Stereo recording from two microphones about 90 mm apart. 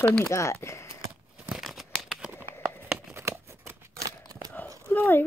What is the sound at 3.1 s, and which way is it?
Scissors, 30° right (ahead or behind).